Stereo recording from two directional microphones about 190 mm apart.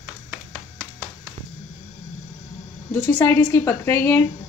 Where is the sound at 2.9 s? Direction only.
10° left (ahead or behind).